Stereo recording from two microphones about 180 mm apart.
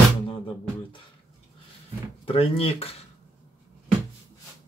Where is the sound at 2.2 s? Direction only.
30° left (ahead or behind).